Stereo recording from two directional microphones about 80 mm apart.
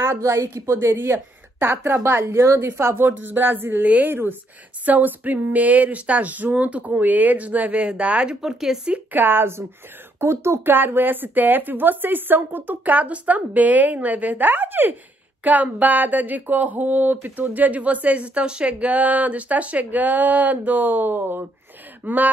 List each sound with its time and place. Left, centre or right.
0.0 s speech: right; by 8.9 s centre
8.9 s speech: right